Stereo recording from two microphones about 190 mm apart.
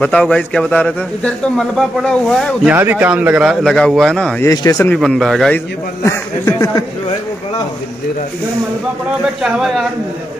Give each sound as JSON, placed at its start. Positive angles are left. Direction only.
{"t": 0.0, "sound": "a man's voice", "side_deg": 5}
{"t": 2.7, "sound": "a man's voice", "side_deg": -10}
{"t": 4.5, "sound": "speech", "side_deg": 15}
{"t": 4.9, "sound": "a man's voice", "side_deg": 0}
{"t": 6.0, "sound": "speech", "side_deg": 15}
{"t": 9.4, "sound": "a man's voice", "side_deg": 0}